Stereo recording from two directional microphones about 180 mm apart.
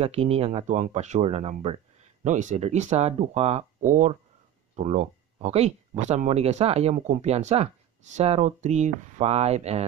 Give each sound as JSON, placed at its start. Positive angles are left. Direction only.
{"t": 0.0, "sound": "speech", "side_deg": -35}